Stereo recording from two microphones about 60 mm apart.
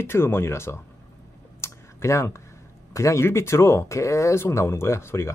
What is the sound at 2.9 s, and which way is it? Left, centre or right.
Speech, left.